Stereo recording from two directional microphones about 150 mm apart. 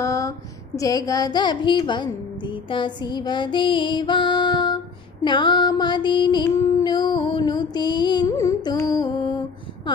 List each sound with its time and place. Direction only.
0.0 s a sound: 20° left (ahead or behind)
0.7 s speech: 25° left (ahead or behind)
6.8 s music: 30° left (ahead or behind)